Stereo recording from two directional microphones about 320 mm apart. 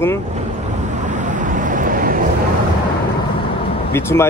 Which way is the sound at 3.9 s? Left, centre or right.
Centre.